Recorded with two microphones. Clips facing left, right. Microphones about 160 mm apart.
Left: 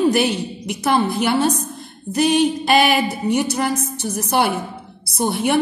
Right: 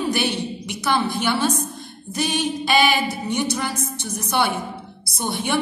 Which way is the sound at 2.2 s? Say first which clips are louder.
Left 7 dB; 50° left (ahead or behind).